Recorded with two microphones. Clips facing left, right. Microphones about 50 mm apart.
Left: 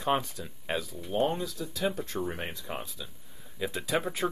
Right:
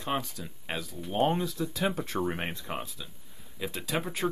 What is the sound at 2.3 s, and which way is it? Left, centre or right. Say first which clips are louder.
Speech: right 2 dB; right.